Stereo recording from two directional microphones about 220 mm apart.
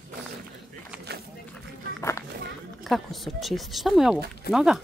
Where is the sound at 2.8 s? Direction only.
Centre (ahead or behind).